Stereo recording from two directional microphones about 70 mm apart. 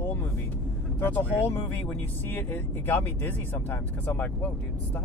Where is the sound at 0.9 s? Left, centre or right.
Left.